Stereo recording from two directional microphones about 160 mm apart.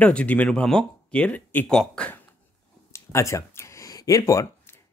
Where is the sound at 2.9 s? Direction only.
20° left (ahead or behind).